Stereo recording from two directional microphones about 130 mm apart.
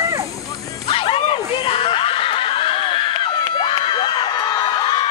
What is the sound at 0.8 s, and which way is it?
Snicker, 45° left (ahead or behind).